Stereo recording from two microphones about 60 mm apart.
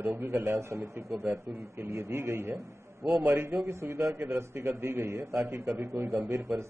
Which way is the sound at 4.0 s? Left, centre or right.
Right.